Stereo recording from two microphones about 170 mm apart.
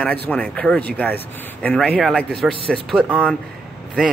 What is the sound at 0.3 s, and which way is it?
A man's voice, 5° left (ahead or behind).